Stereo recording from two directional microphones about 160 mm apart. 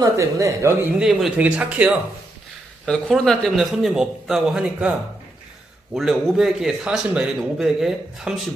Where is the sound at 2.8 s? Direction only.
5° left (ahead or behind).